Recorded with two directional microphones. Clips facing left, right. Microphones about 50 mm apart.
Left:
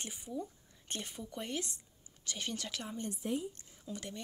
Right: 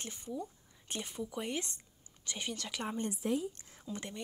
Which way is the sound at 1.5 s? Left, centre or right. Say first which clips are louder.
Even; right.